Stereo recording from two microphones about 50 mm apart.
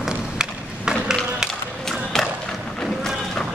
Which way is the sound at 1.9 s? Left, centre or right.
Centre.